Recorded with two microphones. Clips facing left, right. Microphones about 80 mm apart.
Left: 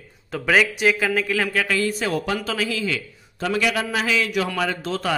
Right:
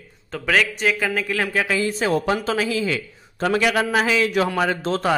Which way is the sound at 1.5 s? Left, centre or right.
Centre.